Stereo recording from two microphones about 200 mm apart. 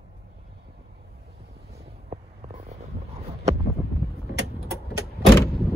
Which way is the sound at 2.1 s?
35° right (ahead or behind).